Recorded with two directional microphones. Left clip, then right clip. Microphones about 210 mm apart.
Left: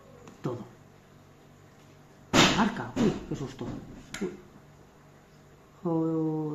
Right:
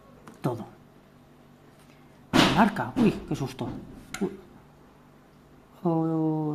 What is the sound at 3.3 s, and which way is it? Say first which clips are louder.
Speech: right 4 dB; 50° right (ahead or behind).